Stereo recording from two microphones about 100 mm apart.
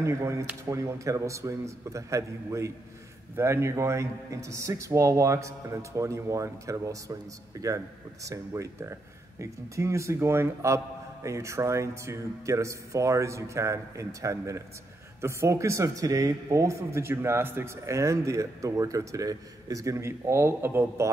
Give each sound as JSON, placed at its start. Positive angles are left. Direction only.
{"t": 0.0, "sound": "a man's voice", "side_deg": -30}